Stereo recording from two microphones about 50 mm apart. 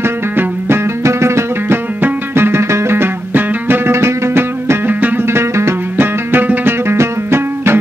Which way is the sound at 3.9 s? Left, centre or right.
Right.